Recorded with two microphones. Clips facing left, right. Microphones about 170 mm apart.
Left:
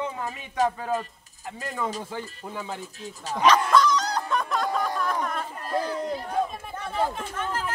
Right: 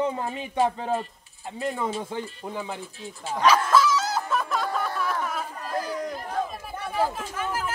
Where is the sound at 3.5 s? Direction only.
5° right (ahead or behind).